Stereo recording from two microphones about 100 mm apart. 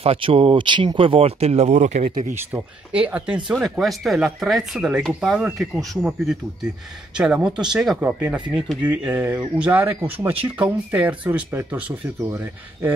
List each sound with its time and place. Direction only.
0.0 s speech: 70° right (ahead or behind); by 0.8 s 55° right (ahead or behind)
0.9 s speech: 65° right (ahead or behind); by 1.8 s 90° right
2.3 s speech: 15° right (ahead or behind)
8.0 s speech: 15° right (ahead or behind)